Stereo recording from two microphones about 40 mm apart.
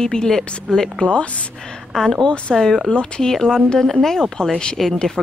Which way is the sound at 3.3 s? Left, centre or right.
Centre.